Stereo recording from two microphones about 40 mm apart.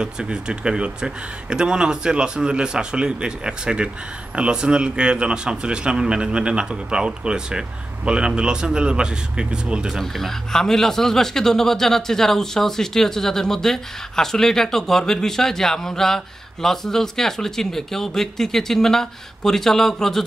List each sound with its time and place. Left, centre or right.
0.0 s a man's voice: right
9.9 s speech: centre